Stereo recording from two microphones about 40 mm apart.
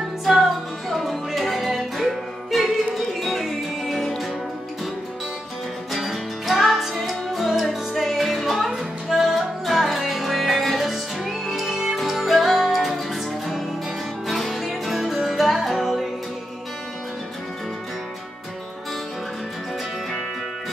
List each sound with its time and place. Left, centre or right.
0.4 s music: centre
5.9 s music: centre